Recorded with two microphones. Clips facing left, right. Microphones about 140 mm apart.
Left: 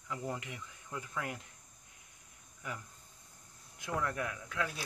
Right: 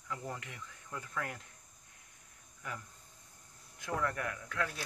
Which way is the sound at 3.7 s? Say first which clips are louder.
Even; 15° left (ahead or behind).